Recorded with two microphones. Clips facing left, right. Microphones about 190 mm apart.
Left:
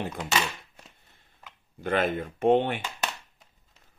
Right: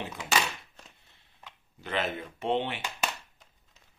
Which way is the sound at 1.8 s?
50° left (ahead or behind).